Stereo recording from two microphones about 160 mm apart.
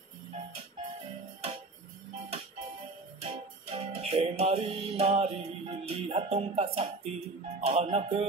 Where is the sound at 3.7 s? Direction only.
40° right (ahead or behind).